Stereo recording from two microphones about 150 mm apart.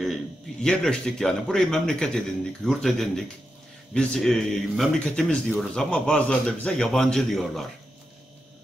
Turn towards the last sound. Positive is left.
turn(degrees=0)  # may be behind; listen again after turning